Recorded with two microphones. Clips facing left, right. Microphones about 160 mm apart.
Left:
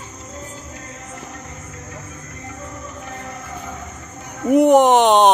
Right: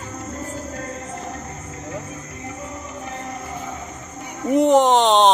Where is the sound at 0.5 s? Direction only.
50° right (ahead or behind).